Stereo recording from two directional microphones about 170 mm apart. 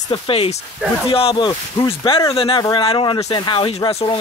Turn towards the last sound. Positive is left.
turn(degrees=30)  # may be behind; listen again after turning